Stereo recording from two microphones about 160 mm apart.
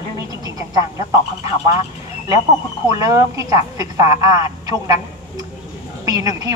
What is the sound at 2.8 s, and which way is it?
A woman's voice, 20° right (ahead or behind).